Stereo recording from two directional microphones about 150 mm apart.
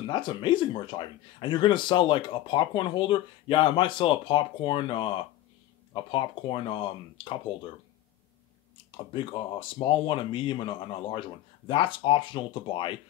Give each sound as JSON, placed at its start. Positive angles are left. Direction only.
{"t": 0.0, "sound": "speech", "side_deg": 30}
{"t": 8.9, "sound": "speech", "side_deg": 35}